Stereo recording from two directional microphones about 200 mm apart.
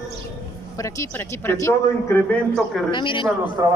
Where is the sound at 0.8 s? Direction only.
15° left (ahead or behind).